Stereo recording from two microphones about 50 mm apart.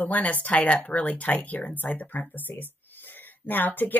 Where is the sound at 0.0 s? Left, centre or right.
Left.